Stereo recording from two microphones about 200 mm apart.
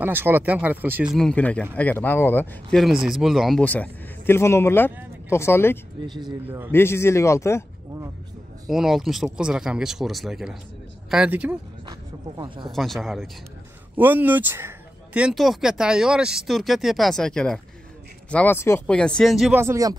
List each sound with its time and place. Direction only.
0.0 s speech: 10° right (ahead or behind); by 5.8 s 10° left (ahead or behind)
6.0 s speech: 20° right (ahead or behind)
6.7 s speech: 10° left (ahead or behind)
8.6 s speech: centre (ahead or behind)
11.9 s speech: 25° right (ahead or behind)
12.7 s speech: centre (ahead or behind)
19.6 s speech: 15° right (ahead or behind)